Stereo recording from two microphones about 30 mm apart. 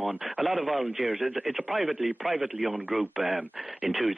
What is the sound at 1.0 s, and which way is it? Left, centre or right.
Speech, centre.